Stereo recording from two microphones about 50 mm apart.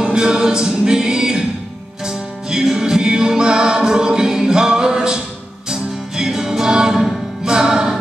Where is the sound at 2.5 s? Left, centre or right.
Centre.